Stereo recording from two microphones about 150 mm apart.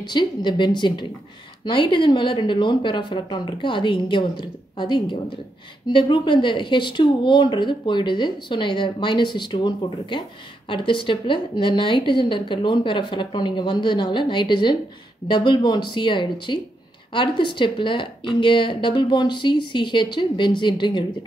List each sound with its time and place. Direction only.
0.0 s speech: 30° left (ahead or behind)